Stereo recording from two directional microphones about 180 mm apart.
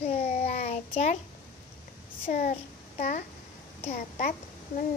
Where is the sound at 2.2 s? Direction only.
45° left (ahead or behind).